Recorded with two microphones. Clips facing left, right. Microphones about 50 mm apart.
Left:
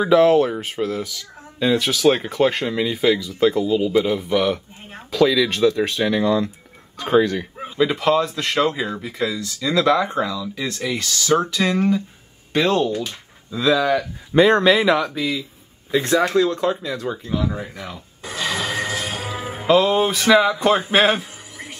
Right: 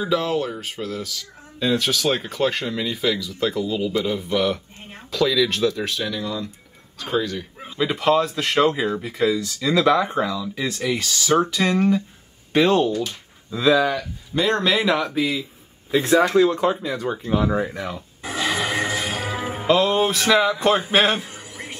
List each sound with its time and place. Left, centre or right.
0.0 s speech: left
1.6 s speech: centre
6.2 s speech: left
7.0 s speech: left
7.7 s speech: centre
17.3 s speech: right
17.6 s music: centre
19.1 s music: right
19.6 s a man's voice: centre